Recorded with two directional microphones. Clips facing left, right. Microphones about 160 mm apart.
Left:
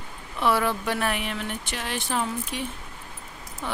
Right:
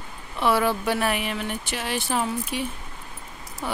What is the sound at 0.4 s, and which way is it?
Speech, centre (ahead or behind).